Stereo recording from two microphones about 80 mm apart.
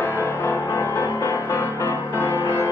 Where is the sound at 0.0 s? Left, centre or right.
Left.